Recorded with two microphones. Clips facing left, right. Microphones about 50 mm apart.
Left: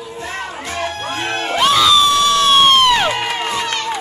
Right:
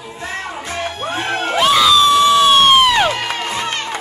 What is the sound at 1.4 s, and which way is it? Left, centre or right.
Crowd, centre.